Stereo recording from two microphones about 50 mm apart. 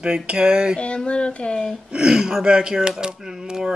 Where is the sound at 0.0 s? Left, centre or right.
Centre.